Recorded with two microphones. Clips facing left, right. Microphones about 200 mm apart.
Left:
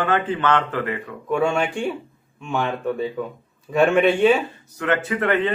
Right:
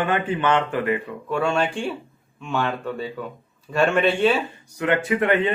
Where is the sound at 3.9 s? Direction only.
15° left (ahead or behind).